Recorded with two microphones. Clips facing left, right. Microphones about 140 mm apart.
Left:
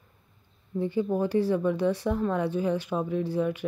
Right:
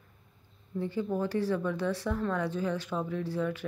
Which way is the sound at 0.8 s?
15° left (ahead or behind).